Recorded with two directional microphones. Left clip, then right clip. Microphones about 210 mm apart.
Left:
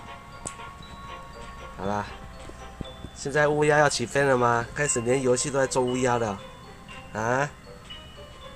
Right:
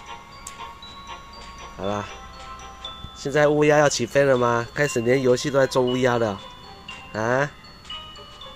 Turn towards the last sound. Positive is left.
turn(degrees=-15)  # may be behind; listen again after turning